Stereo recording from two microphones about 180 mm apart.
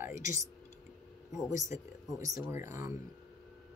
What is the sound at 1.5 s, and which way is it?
Speech, 15° right (ahead or behind).